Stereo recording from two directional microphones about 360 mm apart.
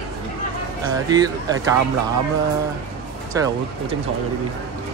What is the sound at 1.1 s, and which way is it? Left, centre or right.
Speech, centre.